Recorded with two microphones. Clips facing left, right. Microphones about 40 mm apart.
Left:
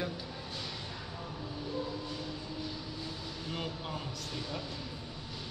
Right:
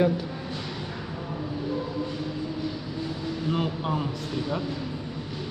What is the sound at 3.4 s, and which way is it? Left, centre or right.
Speech, right.